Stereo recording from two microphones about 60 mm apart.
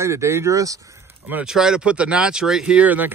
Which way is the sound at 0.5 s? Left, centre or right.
Right.